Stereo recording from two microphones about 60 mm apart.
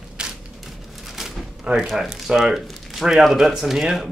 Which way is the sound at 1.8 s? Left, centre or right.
Centre.